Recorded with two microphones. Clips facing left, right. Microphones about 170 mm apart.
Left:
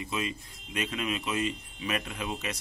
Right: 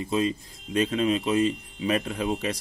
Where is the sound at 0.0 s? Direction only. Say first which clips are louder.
Right 8 dB; 35° right (ahead or behind).